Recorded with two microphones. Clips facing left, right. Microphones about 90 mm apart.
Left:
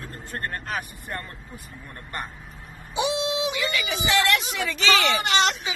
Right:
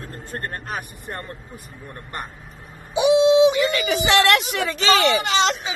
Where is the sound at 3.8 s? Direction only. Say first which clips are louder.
Right 5 dB; 65° right (ahead or behind).